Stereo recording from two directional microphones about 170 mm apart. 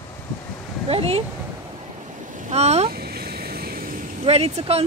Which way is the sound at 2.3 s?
45° right (ahead or behind).